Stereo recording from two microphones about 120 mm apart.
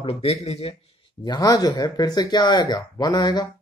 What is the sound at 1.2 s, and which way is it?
Speech, 35° left (ahead or behind).